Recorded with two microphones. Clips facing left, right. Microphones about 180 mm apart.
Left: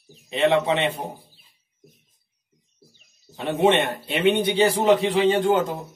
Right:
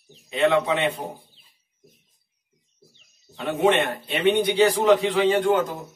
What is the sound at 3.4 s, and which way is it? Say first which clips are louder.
A man's voice: left 1 dB; 25° left (ahead or behind).